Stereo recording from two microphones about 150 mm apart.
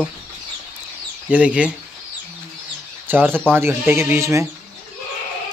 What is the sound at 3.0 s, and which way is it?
Speech, 15° right (ahead or behind).